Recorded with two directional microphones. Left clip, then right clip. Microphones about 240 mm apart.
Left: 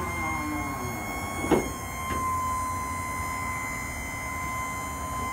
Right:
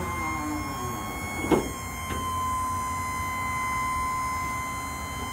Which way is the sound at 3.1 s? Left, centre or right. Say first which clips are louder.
Right 2 dB; left.